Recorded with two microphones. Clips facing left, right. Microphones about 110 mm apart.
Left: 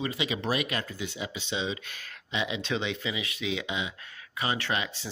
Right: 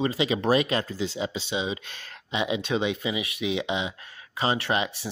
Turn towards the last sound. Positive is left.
turn(degrees=-25)  # may be behind; listen again after turning